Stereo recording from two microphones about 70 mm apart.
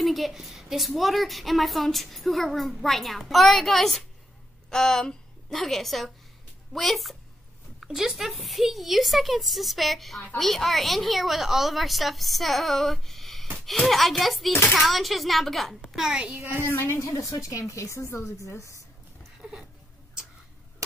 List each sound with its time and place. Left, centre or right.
0.0 s a woman's voice: centre
16.6 s a woman's voice: left
17.1 s speech: left
19.4 s a sound: centre